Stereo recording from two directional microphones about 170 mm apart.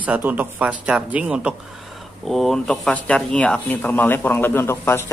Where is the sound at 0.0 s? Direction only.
10° right (ahead or behind).